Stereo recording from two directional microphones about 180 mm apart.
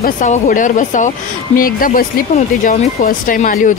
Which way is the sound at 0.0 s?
45° left (ahead or behind).